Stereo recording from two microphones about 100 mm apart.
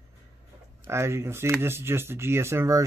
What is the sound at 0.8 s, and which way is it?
Speech, 25° right (ahead or behind).